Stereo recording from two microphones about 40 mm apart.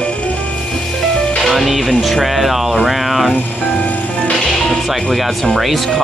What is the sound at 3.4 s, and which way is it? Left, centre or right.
Music, left.